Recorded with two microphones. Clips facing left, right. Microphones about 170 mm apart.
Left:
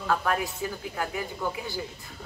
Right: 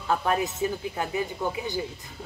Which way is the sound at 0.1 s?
20° right (ahead or behind).